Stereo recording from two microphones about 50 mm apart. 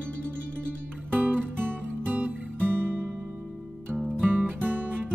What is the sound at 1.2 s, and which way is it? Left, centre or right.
Music, right.